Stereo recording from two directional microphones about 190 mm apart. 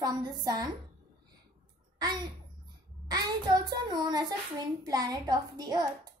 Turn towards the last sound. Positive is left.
turn(degrees=-20)  # may be behind; listen again after turning